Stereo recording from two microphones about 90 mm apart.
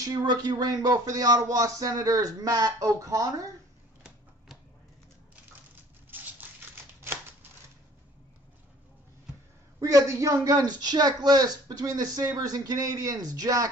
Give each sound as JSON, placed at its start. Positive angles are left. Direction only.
{"t": 0.0, "sound": "a woman's voice", "side_deg": -45}
{"t": 6.0, "sound": "a sound", "side_deg": -20}
{"t": 9.8, "sound": "a woman's voice", "side_deg": -40}